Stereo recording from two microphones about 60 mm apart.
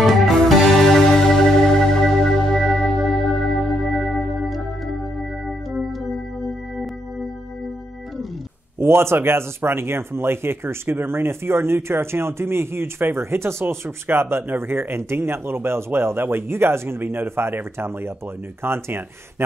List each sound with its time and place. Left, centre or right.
0.0 s music: centre
3.0 s organ: centre
5.7 s music: centre
8.7 s speech: right
14.0 s speech: right